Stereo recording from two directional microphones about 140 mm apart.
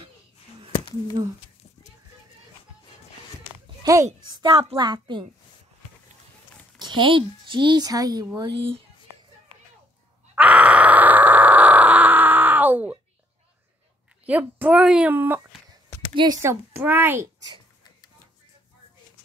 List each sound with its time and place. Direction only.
3.8 s a child's voice: 25° right (ahead or behind)
6.8 s speech: 35° right (ahead or behind)
8.4 s a child's voice: 40° right (ahead or behind)
10.3 s grunt: 10° right (ahead or behind)
14.2 s speech: 10° right (ahead or behind)